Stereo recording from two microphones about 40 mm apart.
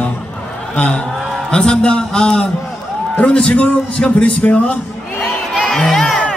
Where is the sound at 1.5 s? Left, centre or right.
Left.